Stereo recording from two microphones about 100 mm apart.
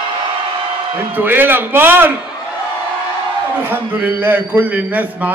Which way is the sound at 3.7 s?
20° right (ahead or behind).